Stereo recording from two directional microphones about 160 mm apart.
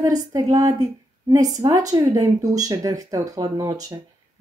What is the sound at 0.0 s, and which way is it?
Speech, 20° right (ahead or behind).